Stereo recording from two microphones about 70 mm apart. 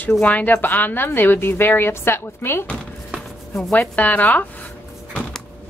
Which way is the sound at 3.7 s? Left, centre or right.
Left.